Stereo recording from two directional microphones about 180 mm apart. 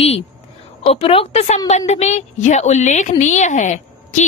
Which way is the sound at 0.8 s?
30° left (ahead or behind).